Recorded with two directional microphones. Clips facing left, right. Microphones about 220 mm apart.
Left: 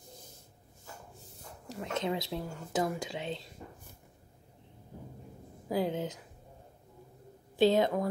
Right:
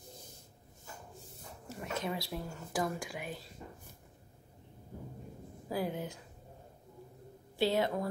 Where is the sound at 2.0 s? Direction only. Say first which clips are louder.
Left 5 dB; 20° left (ahead or behind).